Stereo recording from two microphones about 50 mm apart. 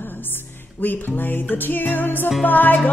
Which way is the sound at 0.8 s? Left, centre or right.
Left.